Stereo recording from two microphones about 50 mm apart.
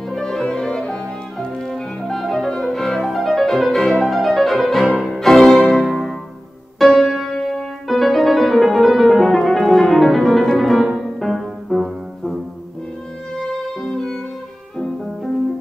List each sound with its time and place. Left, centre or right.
0.2 s music: centre
1.5 s music: centre
7.0 s music: centre
10.8 s music: centre
13.8 s music: centre